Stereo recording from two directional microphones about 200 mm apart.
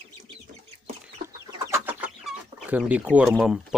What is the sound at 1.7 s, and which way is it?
Chicken, 10° right (ahead or behind).